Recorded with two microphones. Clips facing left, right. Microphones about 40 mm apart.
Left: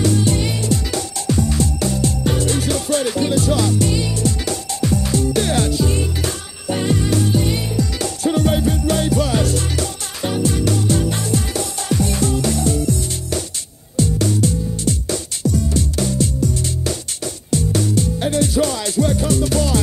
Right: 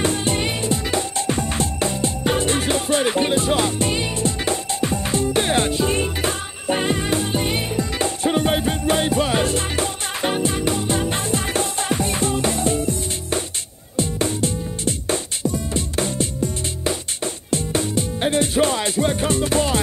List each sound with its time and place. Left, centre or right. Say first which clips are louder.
0.0 s music: left 3 dB; right